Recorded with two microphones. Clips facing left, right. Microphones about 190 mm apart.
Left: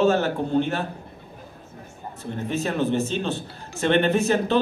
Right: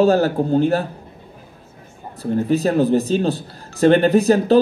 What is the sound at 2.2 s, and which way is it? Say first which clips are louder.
Speech: right 9 dB; 40° right (ahead or behind).